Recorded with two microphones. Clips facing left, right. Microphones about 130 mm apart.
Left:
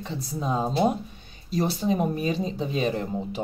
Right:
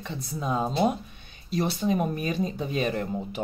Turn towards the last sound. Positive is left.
turn(degrees=30)  # may be behind; listen again after turning